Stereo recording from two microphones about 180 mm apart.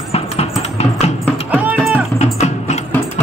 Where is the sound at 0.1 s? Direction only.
35° left (ahead or behind).